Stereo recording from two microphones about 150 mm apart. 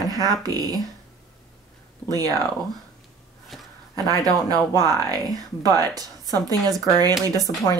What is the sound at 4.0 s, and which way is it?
Speech, 25° right (ahead or behind).